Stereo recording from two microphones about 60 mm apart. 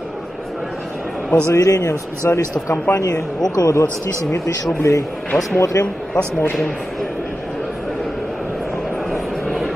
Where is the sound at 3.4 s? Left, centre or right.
Left.